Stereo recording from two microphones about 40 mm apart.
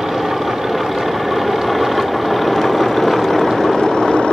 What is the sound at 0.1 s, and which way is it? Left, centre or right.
Vehicle, centre.